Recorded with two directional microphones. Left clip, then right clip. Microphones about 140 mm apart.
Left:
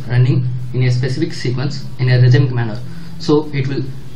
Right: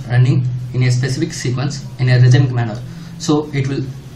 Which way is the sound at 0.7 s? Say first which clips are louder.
Even; 50° right (ahead or behind).